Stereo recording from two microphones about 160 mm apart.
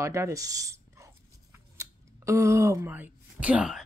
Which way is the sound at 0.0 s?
20° right (ahead or behind).